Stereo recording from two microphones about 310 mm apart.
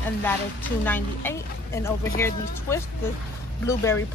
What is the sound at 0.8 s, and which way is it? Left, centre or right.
A woman's voice, centre.